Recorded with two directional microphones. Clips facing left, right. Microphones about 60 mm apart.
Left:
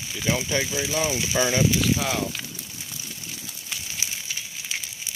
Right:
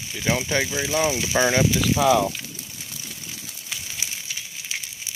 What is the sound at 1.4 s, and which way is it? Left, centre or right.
Speech, right.